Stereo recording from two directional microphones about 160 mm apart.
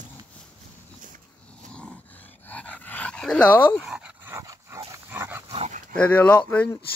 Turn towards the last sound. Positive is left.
turn(degrees=10)  # may be behind; listen again after turning